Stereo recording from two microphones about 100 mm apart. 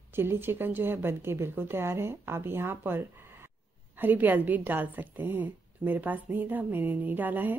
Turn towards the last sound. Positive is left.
turn(degrees=-20)  # may be behind; listen again after turning